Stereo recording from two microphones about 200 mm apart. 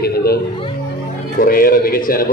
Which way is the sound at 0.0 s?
50° left (ahead or behind).